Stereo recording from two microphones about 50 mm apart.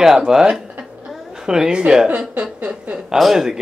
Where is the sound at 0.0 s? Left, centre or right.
Centre; by 3.0 s right.